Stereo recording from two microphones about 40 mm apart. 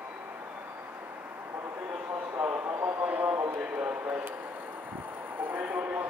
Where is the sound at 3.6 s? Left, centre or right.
Right.